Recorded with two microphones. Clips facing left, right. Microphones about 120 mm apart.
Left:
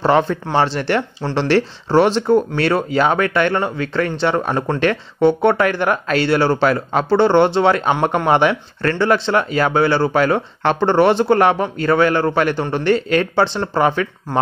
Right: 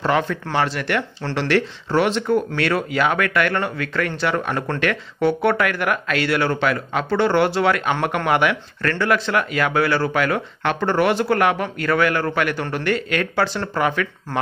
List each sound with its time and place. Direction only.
0.0 s speech: 30° left (ahead or behind)